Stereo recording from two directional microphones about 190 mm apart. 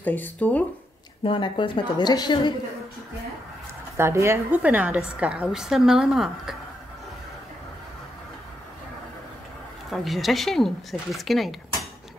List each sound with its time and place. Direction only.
0.0 s speech: 10° left (ahead or behind)
1.2 s a woman's voice: 25° left (ahead or behind)
3.9 s a woman's voice: 15° right (ahead or behind)
9.8 s a woman's voice: centre (ahead or behind)